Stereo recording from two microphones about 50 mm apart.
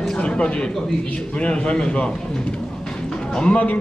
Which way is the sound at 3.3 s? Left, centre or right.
Left.